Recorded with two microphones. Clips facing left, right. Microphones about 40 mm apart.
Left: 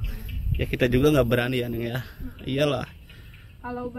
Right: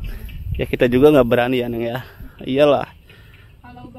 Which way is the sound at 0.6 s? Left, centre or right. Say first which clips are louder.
Right 8 dB; right.